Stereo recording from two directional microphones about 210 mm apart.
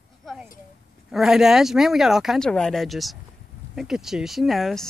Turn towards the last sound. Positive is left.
turn(degrees=0)  # may be behind; listen again after turning